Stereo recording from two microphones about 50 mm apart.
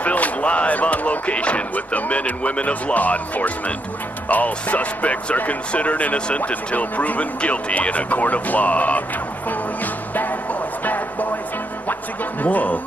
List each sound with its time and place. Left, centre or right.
0.0 s speech: left
10.1 s music: left
11.9 s speech: left